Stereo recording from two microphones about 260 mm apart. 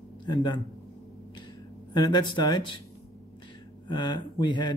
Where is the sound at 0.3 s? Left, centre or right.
Centre.